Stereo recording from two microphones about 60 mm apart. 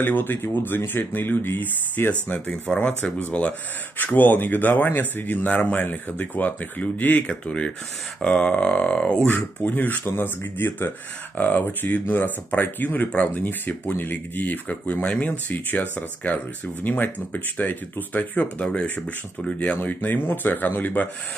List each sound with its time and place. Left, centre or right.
0.0 s a man's voice: left; by 9.2 s centre
9.2 s a man's voice: left; by 19.0 s centre
19.8 s speech: left